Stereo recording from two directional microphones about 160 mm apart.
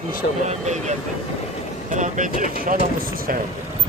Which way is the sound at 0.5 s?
45° right (ahead or behind).